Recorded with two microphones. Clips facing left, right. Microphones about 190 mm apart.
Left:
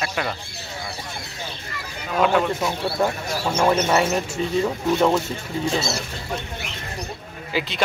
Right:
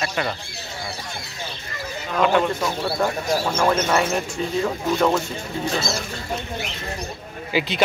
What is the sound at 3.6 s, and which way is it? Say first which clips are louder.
Speech: left 3 dB; 15° left (ahead or behind).